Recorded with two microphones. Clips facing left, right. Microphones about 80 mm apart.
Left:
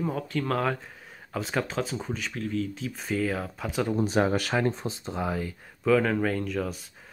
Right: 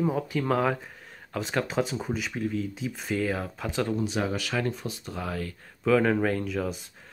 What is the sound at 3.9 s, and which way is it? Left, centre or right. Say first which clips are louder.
Speech: left 4 dB; left.